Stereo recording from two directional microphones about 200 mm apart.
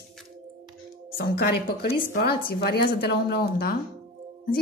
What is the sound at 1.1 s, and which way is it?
A woman's voice, 50° left (ahead or behind).